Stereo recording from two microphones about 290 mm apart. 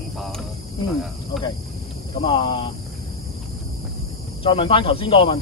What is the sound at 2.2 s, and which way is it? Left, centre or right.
Speech, centre.